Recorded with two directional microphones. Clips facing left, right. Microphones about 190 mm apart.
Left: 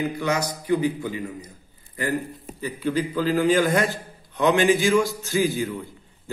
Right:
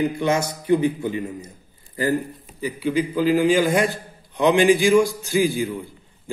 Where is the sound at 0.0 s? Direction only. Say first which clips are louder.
Right 4 dB; 25° right (ahead or behind).